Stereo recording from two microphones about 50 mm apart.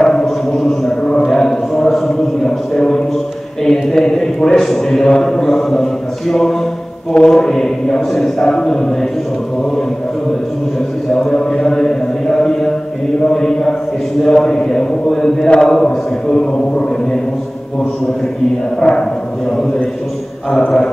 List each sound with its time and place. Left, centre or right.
0.0 s a sound: centre
7.1 s a man's voice: centre
11.1 s mantra: centre
13.3 s a man's voice: centre
18.8 s speech: centre